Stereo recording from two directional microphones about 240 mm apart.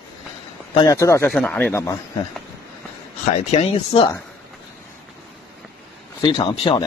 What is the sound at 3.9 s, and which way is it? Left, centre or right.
Speech, left.